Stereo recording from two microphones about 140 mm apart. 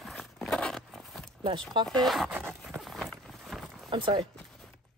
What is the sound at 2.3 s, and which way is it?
Zipper, 15° right (ahead or behind).